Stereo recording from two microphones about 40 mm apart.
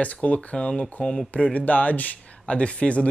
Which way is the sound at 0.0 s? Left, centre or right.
Left.